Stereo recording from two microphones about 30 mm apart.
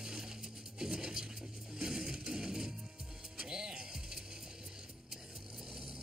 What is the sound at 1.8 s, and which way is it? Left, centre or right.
Music, centre.